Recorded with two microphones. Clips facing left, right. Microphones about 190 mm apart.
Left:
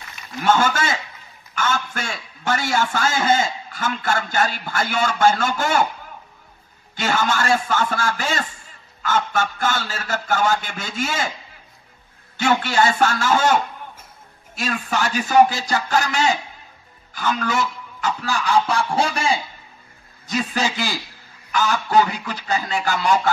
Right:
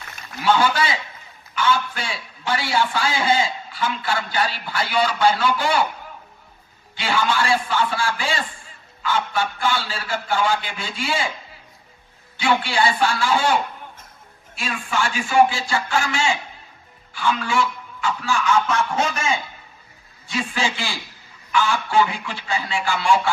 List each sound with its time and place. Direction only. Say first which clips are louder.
0.4 s a man's voice: even; 45° left (ahead or behind)
7.0 s a man's voice: even; 45° left (ahead or behind)
12.4 s a man's voice: left 2 dB; 45° left (ahead or behind)